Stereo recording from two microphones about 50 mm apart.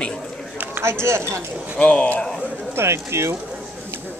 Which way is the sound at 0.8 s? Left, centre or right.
Right.